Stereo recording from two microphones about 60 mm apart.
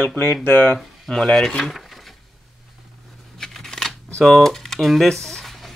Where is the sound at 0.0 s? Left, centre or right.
Left.